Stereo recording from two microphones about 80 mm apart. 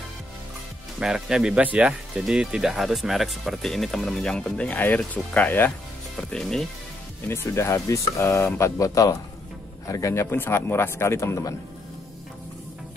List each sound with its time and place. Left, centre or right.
0.9 s speech: centre; by 5.7 s left
6.1 s speech: centre
7.2 s speech: left